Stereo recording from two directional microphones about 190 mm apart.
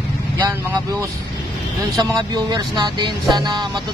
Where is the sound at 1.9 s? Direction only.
20° right (ahead or behind).